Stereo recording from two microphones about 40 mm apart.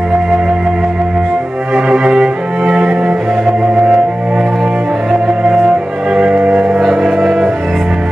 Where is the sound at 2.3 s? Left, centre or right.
Right.